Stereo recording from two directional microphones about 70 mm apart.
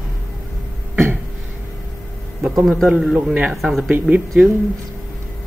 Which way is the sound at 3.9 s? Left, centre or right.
Centre.